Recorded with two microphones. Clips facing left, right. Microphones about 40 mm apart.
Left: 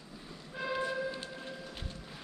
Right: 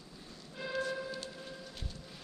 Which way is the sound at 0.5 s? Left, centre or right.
Left.